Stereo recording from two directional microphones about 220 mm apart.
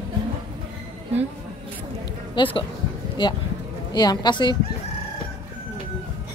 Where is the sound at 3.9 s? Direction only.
20° left (ahead or behind).